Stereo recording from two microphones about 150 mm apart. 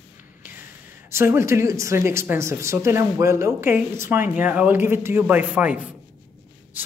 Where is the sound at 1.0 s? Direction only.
15° right (ahead or behind).